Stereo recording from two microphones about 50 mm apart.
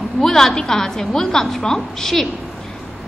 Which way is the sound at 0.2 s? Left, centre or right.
Centre.